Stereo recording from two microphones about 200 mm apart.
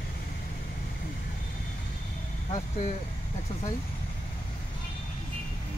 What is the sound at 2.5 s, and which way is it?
Speech, 35° left (ahead or behind).